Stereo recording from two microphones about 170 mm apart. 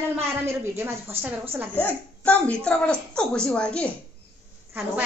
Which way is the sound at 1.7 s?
10° left (ahead or behind).